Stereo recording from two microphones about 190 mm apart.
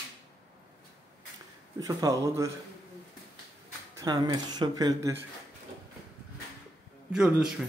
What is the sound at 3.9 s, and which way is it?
Speech, 20° right (ahead or behind).